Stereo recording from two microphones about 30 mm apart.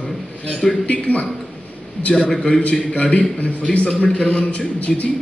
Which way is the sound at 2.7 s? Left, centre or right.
Left.